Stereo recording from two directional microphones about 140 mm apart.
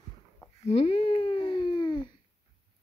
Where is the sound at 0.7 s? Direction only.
40° left (ahead or behind).